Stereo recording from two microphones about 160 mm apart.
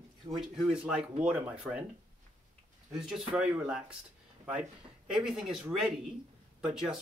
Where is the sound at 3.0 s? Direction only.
5° right (ahead or behind).